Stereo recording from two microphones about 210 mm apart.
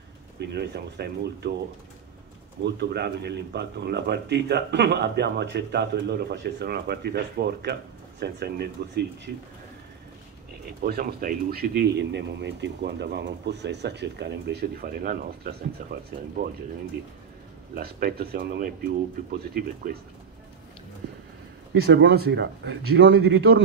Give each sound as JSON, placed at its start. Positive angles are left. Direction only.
{"t": 0.4, "sound": "speech", "side_deg": -50}
{"t": 2.6, "sound": "speech", "side_deg": -55}
{"t": 10.8, "sound": "speech", "side_deg": -45}
{"t": 17.7, "sound": "speech", "side_deg": -45}
{"t": 21.7, "sound": "speech", "side_deg": -55}
{"t": 23.1, "sound": "speech", "side_deg": -50}